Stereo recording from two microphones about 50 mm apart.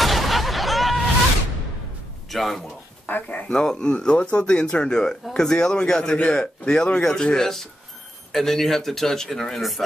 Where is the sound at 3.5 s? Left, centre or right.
Centre.